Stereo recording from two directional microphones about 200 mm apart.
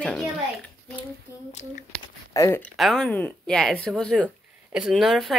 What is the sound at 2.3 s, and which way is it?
Speech, 15° left (ahead or behind).